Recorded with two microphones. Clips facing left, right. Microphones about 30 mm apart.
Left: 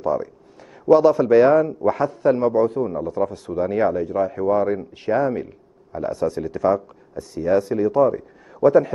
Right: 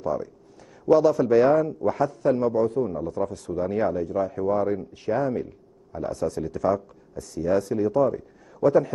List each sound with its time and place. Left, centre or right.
0.0 s a man's voice: left